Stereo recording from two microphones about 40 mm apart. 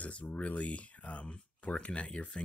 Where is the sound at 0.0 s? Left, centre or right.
Left.